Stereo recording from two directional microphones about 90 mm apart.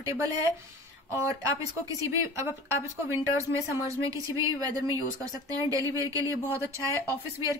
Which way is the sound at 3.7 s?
35° right (ahead or behind).